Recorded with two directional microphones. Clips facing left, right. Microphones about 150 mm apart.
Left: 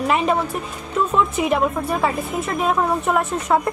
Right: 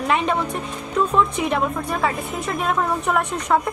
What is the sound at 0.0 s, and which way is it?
Speech, 5° left (ahead or behind).